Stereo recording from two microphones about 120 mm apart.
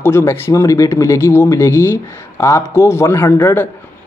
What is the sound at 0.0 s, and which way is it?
Speech, 20° left (ahead or behind).